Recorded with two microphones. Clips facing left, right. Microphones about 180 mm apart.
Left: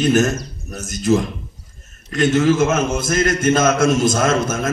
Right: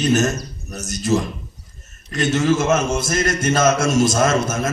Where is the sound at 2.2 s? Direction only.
55° left (ahead or behind).